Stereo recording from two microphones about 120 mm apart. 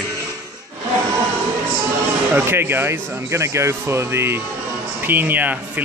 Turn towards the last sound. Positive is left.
turn(degrees=-15)  # may be behind; listen again after turning